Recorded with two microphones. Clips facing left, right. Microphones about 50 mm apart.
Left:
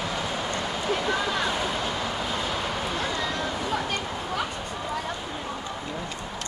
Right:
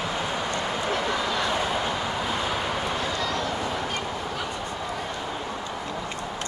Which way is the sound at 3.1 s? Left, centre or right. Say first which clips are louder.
Right 1 dB; centre.